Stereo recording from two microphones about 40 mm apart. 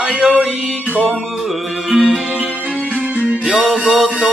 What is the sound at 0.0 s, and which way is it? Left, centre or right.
Music, centre.